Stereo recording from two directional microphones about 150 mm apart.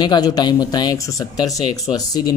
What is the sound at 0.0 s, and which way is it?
Speech, 30° left (ahead or behind).